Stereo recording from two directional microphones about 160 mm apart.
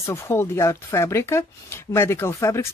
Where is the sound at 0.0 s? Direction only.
15° left (ahead or behind).